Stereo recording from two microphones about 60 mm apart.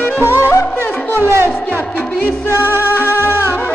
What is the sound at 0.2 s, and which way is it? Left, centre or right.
Music, right.